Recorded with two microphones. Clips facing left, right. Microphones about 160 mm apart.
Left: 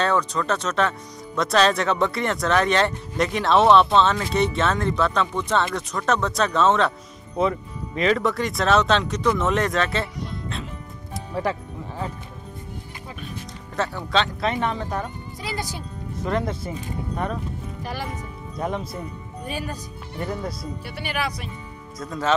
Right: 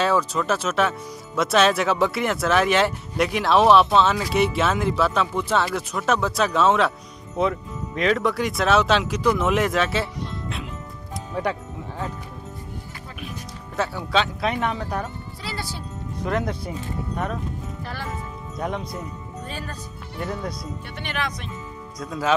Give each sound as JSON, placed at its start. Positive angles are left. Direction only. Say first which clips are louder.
{"t": 0.0, "sound": "speech", "louder": "right 1 dB", "side_deg": -5}
{"t": 11.4, "sound": "speech", "louder": "even", "side_deg": 0}
{"t": 13.7, "sound": "speech", "louder": "even", "side_deg": 0}
{"t": 15.4, "sound": "speech", "louder": "left 2 dB", "side_deg": 15}
{"t": 16.2, "sound": "speech", "louder": "even", "side_deg": 0}
{"t": 17.8, "sound": "speech", "louder": "left 3 dB", "side_deg": 15}
{"t": 18.6, "sound": "speech", "louder": "left 1 dB", "side_deg": 0}
{"t": 19.4, "sound": "speech", "louder": "left 5 dB", "side_deg": 10}
{"t": 20.2, "sound": "speech", "louder": "even", "side_deg": 0}